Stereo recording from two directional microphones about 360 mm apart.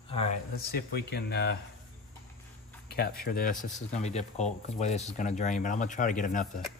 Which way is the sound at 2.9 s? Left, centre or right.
Left.